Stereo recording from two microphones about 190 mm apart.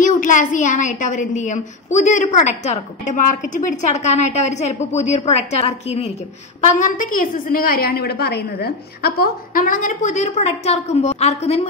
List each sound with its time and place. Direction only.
0.0 s a woman's voice: 40° left (ahead or behind)
6.8 s a woman's voice: 45° left (ahead or behind)